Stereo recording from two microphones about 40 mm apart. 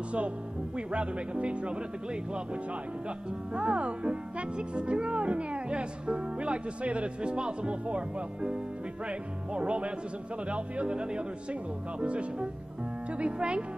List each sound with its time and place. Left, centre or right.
0.7 s speech: right
3.5 s speech: right